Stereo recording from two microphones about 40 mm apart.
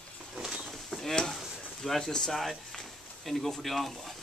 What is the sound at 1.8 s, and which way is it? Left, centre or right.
A man's voice, centre.